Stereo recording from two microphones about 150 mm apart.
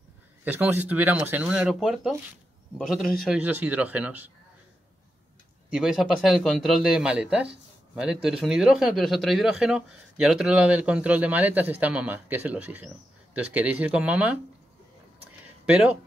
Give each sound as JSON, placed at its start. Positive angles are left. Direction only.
{"t": 0.5, "sound": "a man's voice", "side_deg": -10}
{"t": 3.3, "sound": "a man's voice", "side_deg": -10}
{"t": 5.7, "sound": "a man's voice", "side_deg": -5}
{"t": 15.6, "sound": "speech", "side_deg": -5}